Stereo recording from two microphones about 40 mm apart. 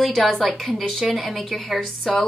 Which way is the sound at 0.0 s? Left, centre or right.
Centre.